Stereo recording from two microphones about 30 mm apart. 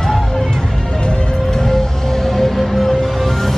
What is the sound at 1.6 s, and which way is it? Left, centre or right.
Music, centre.